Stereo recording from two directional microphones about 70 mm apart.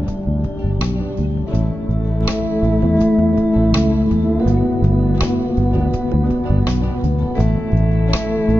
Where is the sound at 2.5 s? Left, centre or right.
Left.